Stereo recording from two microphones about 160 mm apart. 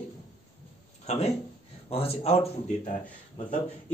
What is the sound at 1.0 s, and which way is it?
Speech, 45° left (ahead or behind).